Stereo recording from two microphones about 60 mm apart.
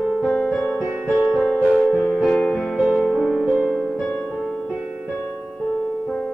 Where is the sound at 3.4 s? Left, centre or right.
Centre.